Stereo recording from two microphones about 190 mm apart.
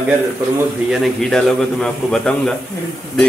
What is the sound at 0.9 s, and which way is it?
A man's voice, centre (ahead or behind).